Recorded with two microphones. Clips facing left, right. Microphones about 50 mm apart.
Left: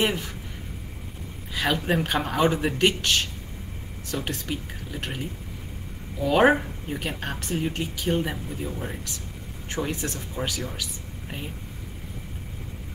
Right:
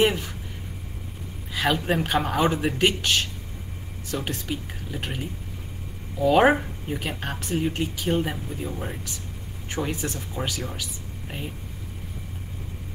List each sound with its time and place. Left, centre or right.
0.0 s speech: centre
1.5 s speech: centre
4.1 s speech: centre